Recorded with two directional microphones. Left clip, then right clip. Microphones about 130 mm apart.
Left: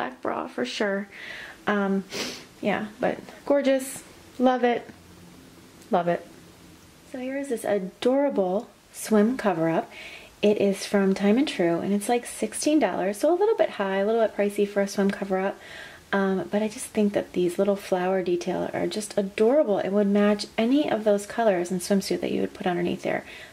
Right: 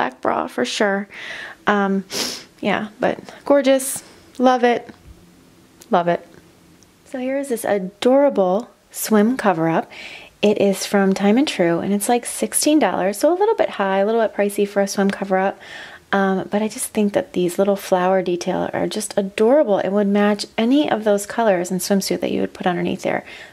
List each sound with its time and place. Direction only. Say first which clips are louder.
0.0 s speech: right 9 dB; 35° right (ahead or behind)
5.9 s speech: right 6 dB; 40° right (ahead or behind)